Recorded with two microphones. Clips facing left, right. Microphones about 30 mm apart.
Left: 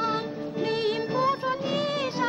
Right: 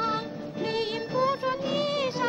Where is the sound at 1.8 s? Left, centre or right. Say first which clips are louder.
Even; centre.